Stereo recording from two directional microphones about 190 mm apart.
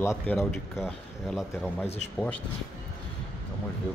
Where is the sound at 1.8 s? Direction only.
35° left (ahead or behind).